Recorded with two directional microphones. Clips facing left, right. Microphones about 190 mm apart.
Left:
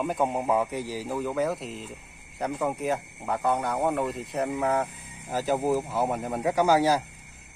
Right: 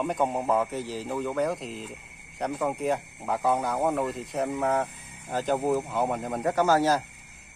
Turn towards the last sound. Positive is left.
turn(degrees=10)  # may be behind; listen again after turning